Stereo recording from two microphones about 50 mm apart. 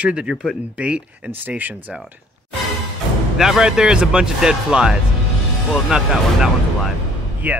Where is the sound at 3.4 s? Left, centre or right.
Centre.